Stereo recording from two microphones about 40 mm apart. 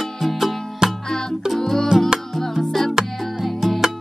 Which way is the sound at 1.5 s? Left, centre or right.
Centre.